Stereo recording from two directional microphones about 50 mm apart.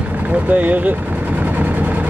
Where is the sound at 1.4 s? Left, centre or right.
Right.